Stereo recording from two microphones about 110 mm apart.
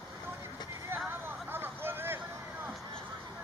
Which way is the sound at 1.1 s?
20° right (ahead or behind).